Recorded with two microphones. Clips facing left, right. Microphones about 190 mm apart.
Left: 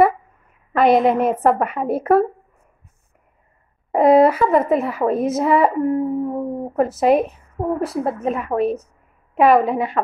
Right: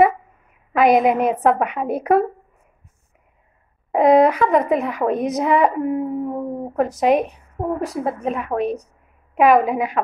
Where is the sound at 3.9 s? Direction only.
5° left (ahead or behind).